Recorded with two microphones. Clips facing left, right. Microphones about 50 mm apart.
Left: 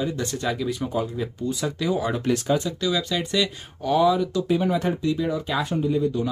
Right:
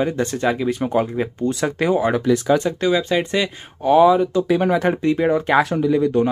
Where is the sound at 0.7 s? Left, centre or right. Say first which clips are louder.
Right 6 dB; right.